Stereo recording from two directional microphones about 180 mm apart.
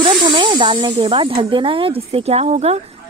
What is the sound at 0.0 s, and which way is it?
Speech, 25° right (ahead or behind).